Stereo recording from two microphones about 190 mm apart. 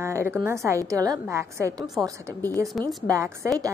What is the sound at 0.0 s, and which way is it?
A woman's voice, 15° right (ahead or behind).